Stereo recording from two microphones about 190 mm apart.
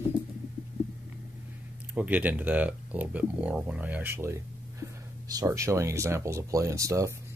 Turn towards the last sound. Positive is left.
turn(degrees=-15)  # may be behind; listen again after turning